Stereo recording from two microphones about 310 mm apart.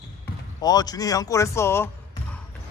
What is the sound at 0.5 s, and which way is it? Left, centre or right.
Speech, centre.